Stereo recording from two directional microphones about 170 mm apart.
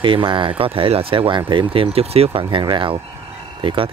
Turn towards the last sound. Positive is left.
turn(degrees=-30)  # may be behind; listen again after turning